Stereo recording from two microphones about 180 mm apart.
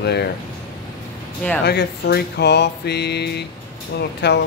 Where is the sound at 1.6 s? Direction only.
65° left (ahead or behind).